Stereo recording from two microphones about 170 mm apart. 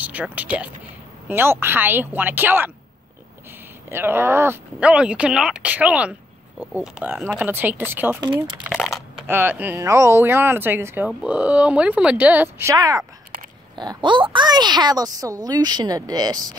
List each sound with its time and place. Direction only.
0.0 s speech: 10° right (ahead or behind)
3.9 s speech: 15° right (ahead or behind)
8.2 s a woman's voice: 25° right (ahead or behind)
8.7 s a sound: centre (ahead or behind)
9.3 s a woman's voice: 10° right (ahead or behind)